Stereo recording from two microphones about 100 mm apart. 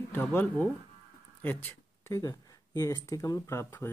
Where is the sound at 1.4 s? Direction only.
20° left (ahead or behind).